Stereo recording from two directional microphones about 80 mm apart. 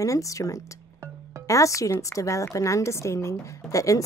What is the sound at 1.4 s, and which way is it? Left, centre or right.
Speech, left.